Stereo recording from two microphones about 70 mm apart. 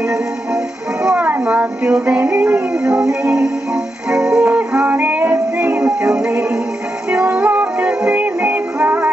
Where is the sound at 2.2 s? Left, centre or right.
Right.